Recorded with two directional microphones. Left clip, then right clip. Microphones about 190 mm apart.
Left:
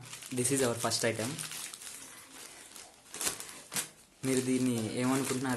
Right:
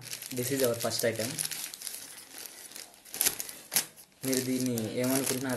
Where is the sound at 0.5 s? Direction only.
30° left (ahead or behind).